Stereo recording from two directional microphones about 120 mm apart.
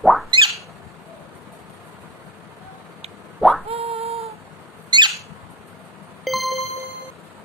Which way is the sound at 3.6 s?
55° right (ahead or behind).